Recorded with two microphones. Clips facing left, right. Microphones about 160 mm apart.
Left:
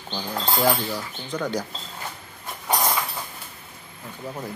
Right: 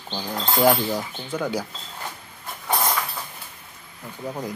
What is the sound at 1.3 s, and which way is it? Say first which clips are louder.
Speech: right 1 dB; 5° right (ahead or behind).